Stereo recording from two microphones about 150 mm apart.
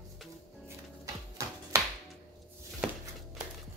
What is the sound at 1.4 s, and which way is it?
Music, 20° right (ahead or behind).